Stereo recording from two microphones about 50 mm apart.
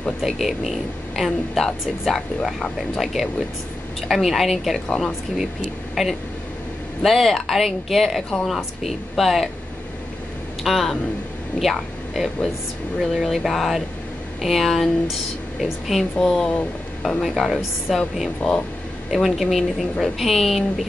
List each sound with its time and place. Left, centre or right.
0.2 s a woman's voice: centre
4.8 s speech: centre
6.0 s a woman's voice: centre
10.6 s speech: centre
13.0 s a woman's voice: centre
16.2 s speech: centre
17.2 s a woman's voice: centre
18.4 s speech: centre
19.0 s a woman's voice: centre